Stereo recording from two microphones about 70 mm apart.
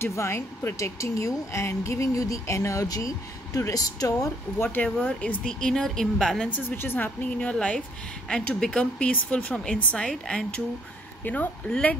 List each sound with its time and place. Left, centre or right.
0.0 s speech: left
4.6 s speech: left
5.4 s speech: centre
6.8 s speech: left
7.3 s speech: centre
11.2 s speech: left